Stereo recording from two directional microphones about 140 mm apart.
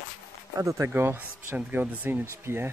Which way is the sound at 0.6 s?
20° right (ahead or behind).